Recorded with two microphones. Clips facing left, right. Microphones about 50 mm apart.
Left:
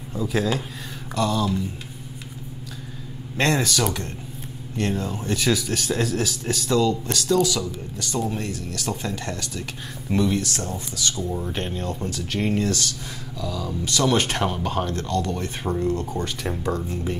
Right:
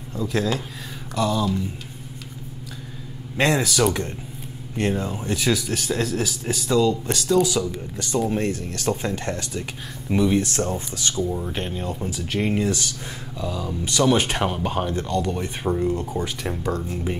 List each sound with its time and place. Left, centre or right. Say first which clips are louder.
0.1 s speech: even; centre
3.3 s speech: right 1 dB; centre
3.8 s speech: right 4 dB; right
5.2 s speech: left 1 dB; centre
7.4 s speech: right 2 dB; right
8.3 s speech: right 5 dB; right
10.0 s speech: right 1 dB; centre
10.3 s speech: right 4 dB; right
11.2 s speech: right 1 dB; centre